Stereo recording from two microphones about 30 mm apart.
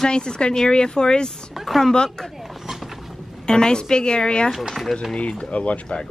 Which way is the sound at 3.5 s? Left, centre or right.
Left.